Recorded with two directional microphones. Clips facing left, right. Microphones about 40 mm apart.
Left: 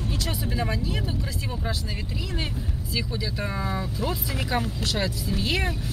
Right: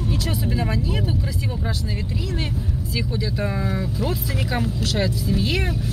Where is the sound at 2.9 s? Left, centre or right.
Centre.